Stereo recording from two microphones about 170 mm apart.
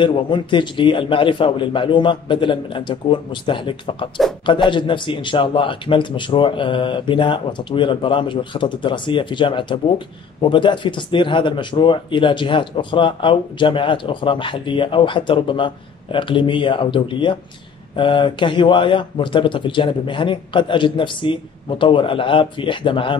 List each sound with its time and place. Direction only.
0.0 s a man's voice: 30° left (ahead or behind)